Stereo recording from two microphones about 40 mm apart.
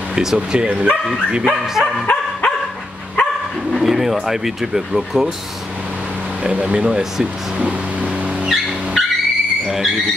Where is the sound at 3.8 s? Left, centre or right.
Centre.